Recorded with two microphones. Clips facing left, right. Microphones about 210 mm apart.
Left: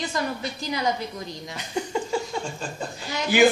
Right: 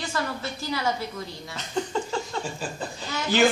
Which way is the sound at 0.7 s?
20° left (ahead or behind).